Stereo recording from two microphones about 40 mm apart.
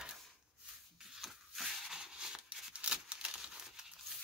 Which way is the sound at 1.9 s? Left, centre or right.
Centre.